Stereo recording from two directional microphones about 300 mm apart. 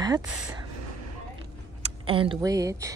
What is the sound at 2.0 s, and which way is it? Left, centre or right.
Speech, centre.